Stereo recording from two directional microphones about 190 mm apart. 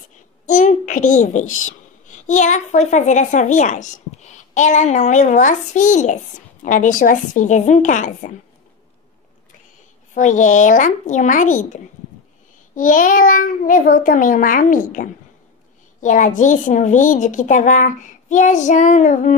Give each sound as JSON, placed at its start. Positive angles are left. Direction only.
{"t": 0.5, "sound": "a sound", "side_deg": 40}
{"t": 1.5, "sound": "a woman's voice", "side_deg": 40}
{"t": 10.1, "sound": "a woman's voice", "side_deg": 40}